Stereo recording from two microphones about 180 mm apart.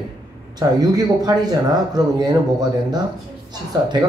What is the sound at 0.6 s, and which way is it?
Speech, 20° right (ahead or behind).